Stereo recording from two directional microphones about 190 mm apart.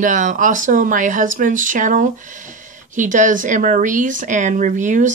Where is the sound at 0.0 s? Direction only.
40° right (ahead or behind).